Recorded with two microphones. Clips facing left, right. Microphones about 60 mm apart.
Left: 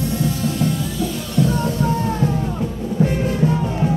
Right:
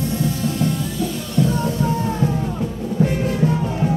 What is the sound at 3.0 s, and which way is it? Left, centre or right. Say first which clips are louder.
Music: even; centre.